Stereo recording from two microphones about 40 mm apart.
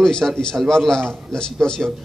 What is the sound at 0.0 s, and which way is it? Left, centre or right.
A man's voice, centre.